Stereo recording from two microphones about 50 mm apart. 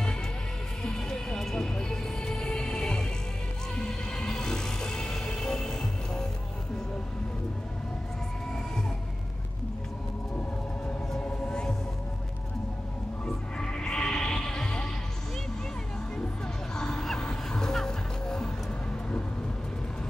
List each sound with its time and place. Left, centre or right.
0.8 s music: centre
11.1 s music: left
13.2 s music: centre
16.7 s a sound: centre
17.2 s music: centre